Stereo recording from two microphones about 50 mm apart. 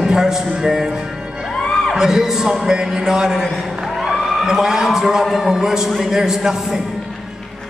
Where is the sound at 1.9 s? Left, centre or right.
Centre.